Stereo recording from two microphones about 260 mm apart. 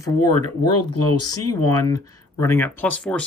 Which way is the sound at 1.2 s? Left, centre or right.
Centre.